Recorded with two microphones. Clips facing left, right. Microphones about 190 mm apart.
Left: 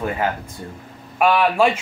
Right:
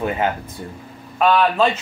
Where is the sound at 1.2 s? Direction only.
10° left (ahead or behind).